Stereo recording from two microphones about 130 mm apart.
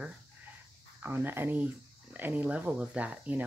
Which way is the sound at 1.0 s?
15° right (ahead or behind).